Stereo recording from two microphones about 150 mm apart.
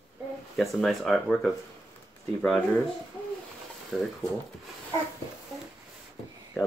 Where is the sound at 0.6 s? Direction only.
Centre (ahead or behind).